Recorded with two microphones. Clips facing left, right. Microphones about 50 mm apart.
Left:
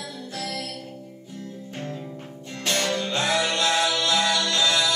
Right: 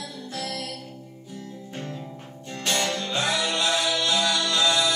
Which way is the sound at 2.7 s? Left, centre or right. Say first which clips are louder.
Left 1 dB; left.